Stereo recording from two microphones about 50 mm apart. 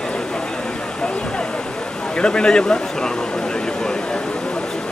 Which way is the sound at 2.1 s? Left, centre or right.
Centre.